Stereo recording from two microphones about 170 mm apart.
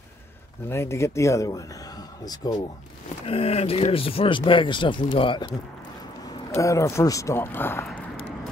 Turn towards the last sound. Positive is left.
turn(degrees=10)  # may be behind; listen again after turning